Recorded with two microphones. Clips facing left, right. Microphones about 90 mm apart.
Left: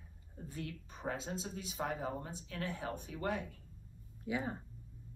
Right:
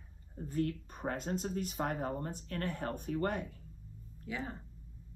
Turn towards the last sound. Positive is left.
turn(degrees=15)  # may be behind; listen again after turning